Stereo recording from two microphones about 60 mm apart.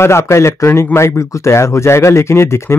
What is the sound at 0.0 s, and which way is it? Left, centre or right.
Speech, left.